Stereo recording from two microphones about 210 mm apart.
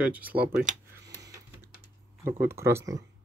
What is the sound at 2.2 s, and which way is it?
Speech, 10° right (ahead or behind).